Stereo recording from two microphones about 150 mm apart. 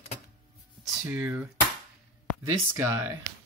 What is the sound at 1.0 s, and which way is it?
Speech, 10° right (ahead or behind).